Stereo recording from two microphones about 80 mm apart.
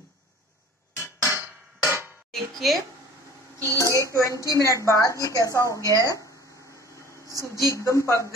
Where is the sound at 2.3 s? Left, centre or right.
Centre.